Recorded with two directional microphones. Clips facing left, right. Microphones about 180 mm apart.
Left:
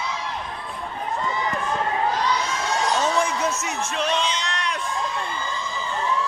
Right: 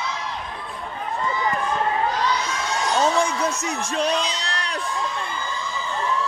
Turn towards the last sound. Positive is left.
turn(degrees=-35)  # may be behind; listen again after turning